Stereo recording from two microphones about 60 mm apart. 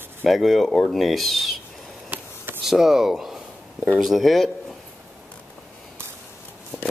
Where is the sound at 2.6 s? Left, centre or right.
Centre.